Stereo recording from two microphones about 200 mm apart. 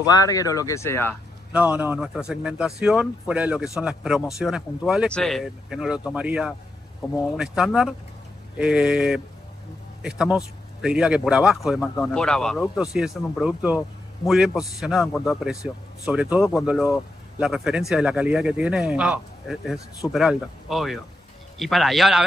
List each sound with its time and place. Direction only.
0.0 s speech: 15° left (ahead or behind)
1.5 s a man's voice: 10° right (ahead or behind)